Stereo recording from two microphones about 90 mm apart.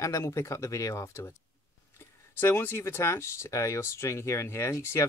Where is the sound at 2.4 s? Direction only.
25° left (ahead or behind).